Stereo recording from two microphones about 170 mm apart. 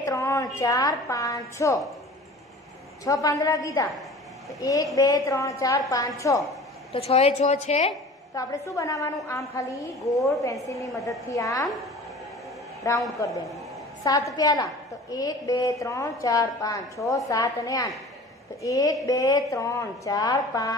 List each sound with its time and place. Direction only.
0.0 s a woman's voice: 20° left (ahead or behind)
3.1 s a woman's voice: 20° left (ahead or behind)
6.9 s a woman's voice: 35° left (ahead or behind)
8.4 s a woman's voice: 20° left (ahead or behind)
12.9 s a woman's voice: 20° left (ahead or behind)
14.0 s a woman's voice: 20° left (ahead or behind)